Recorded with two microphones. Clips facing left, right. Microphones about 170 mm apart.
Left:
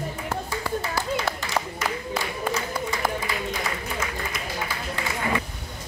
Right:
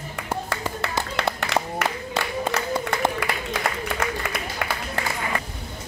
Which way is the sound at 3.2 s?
70° right (ahead or behind).